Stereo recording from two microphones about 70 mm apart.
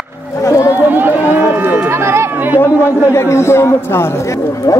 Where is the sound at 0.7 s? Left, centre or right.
Right.